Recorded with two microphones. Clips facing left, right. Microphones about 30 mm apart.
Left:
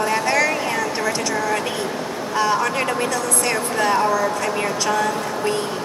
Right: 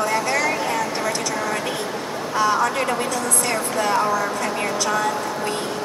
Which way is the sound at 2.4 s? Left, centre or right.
Left.